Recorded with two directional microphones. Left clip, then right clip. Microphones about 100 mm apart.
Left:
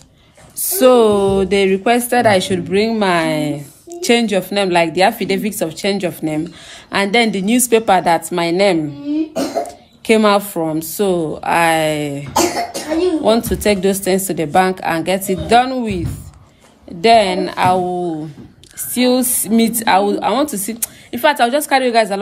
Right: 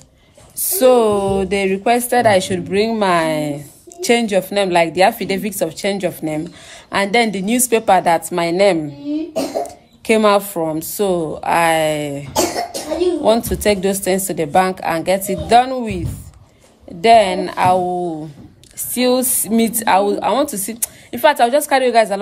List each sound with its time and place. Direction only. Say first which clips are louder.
0.6 s speech: left 2 dB; 30° left (ahead or behind); by 22.2 s 15° left (ahead or behind)